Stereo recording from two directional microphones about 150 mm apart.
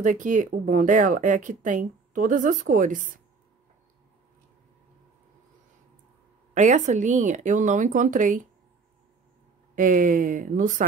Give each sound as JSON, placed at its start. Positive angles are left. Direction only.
{"t": 0.0, "sound": "speech", "side_deg": -60}
{"t": 6.5, "sound": "speech", "side_deg": -55}
{"t": 9.8, "sound": "speech", "side_deg": -60}